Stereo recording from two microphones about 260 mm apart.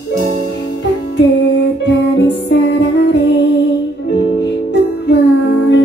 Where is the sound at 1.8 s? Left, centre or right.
Left.